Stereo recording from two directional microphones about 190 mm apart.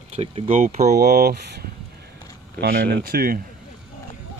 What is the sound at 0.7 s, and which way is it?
Speech, 55° right (ahead or behind).